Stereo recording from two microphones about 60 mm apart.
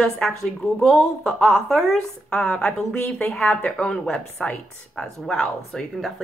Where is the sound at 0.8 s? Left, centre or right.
Centre.